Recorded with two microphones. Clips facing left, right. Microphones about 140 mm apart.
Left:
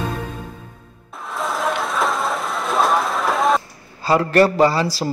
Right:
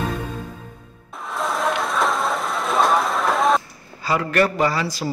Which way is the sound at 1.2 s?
Centre (ahead or behind).